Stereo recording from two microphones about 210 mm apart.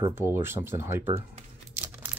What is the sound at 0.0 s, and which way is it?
Speech, 10° right (ahead or behind).